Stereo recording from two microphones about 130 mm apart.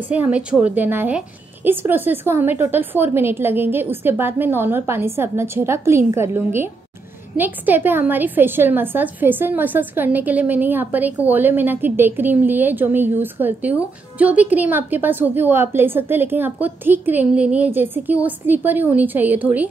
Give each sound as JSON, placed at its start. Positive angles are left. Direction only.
{"t": 0.1, "sound": "a woman's voice", "side_deg": -10}